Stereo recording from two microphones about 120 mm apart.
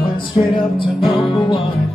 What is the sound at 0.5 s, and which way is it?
Music, 45° left (ahead or behind).